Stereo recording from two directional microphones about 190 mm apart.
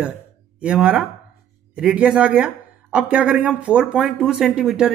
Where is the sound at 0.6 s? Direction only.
5° right (ahead or behind).